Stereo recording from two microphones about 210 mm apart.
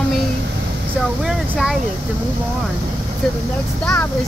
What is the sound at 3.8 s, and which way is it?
Speech, 5° left (ahead or behind).